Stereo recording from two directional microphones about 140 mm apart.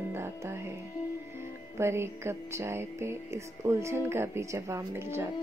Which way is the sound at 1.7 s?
20° right (ahead or behind).